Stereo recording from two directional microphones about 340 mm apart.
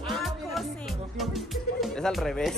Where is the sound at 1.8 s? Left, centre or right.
Centre.